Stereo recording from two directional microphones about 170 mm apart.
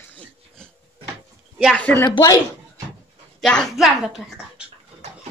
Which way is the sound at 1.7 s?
10° left (ahead or behind).